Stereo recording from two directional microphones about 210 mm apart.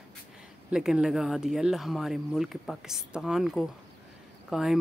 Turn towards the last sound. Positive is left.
turn(degrees=0)  # may be behind; listen again after turning